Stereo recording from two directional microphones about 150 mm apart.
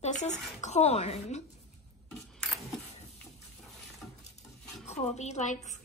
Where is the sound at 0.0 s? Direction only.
50° left (ahead or behind).